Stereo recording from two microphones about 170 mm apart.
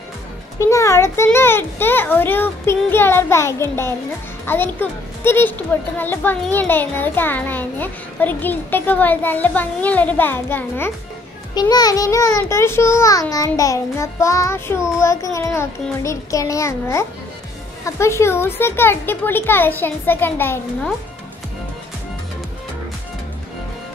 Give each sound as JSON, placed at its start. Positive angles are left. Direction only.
{"t": 0.6, "sound": "a child's voice", "side_deg": 15}
{"t": 11.7, "sound": "a child's voice", "side_deg": 20}